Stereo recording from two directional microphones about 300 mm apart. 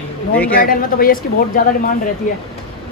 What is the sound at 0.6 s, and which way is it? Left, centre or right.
Speech, left.